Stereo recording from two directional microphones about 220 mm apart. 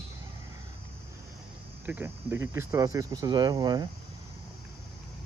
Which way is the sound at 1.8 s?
10° right (ahead or behind).